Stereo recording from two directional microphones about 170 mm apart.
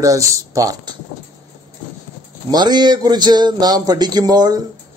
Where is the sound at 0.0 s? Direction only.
20° right (ahead or behind).